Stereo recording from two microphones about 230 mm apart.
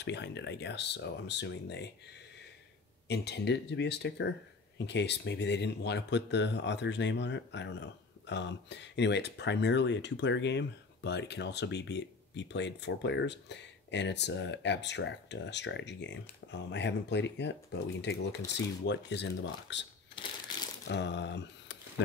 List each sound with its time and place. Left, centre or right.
0.0 s speech: left
3.1 s speech: left
20.2 s crumpling: centre
20.9 s a sound: left